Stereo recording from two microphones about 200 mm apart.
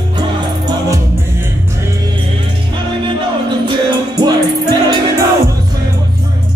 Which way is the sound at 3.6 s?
20° right (ahead or behind).